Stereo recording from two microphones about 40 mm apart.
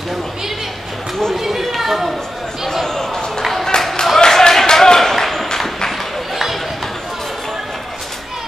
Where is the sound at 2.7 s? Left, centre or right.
Centre.